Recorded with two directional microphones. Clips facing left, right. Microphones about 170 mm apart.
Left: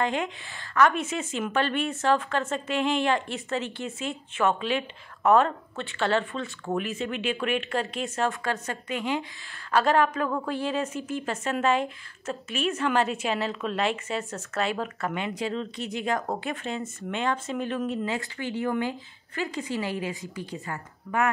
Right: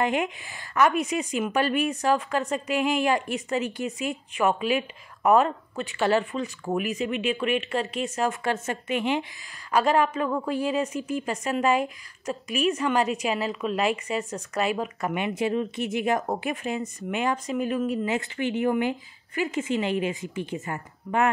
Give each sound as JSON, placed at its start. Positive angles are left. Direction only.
{"t": 0.0, "sound": "speech", "side_deg": -15}
{"t": 8.3, "sound": "speech", "side_deg": -20}
{"t": 9.7, "sound": "speech", "side_deg": -5}
{"t": 12.8, "sound": "speech", "side_deg": 0}
{"t": 17.5, "sound": "speech", "side_deg": -5}
{"t": 18.1, "sound": "speech", "side_deg": -20}